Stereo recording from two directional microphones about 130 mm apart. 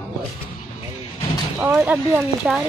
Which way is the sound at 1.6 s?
10° right (ahead or behind).